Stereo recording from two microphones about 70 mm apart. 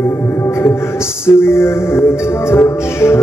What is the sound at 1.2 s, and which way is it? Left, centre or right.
Music, left.